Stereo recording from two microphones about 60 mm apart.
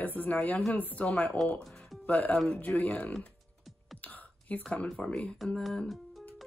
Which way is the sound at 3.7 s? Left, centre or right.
Centre.